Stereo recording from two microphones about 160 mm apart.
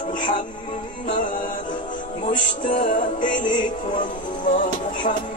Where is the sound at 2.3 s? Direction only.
55° left (ahead or behind).